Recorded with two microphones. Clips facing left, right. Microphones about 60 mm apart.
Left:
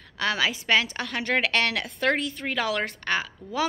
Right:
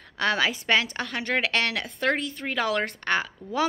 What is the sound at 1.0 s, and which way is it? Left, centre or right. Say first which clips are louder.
A woman's voice: left 1 dB; right.